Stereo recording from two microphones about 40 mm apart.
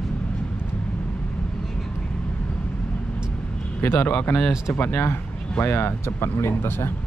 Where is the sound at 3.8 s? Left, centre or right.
Left.